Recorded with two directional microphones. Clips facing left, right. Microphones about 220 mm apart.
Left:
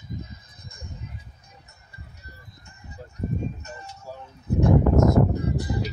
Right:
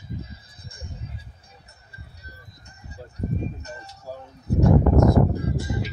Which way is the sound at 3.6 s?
35° right (ahead or behind).